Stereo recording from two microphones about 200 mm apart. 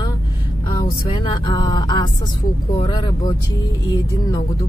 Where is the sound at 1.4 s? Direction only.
20° left (ahead or behind).